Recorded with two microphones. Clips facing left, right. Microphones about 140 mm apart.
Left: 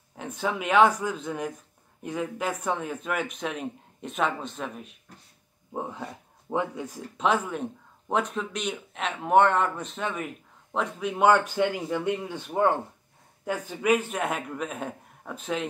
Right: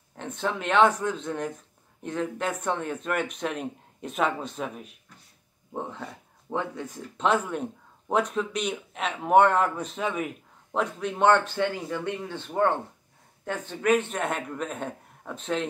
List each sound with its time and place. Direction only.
0.2 s speech: 5° left (ahead or behind)
5.7 s speech: 10° left (ahead or behind)
7.2 s speech: centre (ahead or behind)